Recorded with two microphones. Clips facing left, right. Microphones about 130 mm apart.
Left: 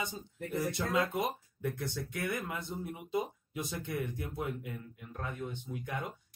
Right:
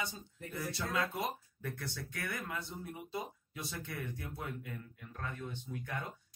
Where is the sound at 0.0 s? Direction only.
20° left (ahead or behind).